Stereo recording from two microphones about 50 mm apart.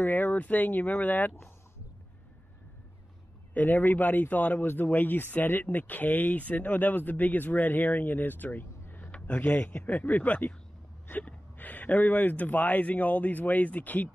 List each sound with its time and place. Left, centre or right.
0.0 s speech: left
3.5 s speech: left
9.1 s a sound: left
9.5 s speech: left